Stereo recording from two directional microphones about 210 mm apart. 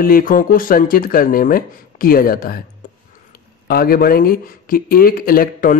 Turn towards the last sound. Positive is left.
turn(degrees=45)  # may be behind; listen again after turning